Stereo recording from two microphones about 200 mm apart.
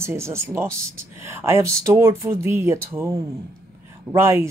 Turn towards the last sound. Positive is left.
turn(degrees=-15)  # may be behind; listen again after turning